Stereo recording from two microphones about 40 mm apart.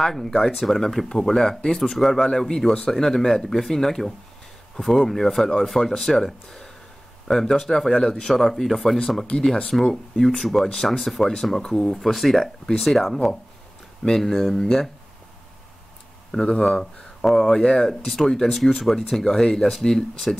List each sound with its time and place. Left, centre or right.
0.0 s speech: centre
9.4 s speech: centre
16.3 s speech: centre
16.6 s speech: centre
18.0 s speech: centre
19.2 s speech: centre